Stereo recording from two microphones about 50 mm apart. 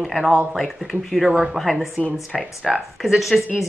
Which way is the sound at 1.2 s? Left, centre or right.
Centre.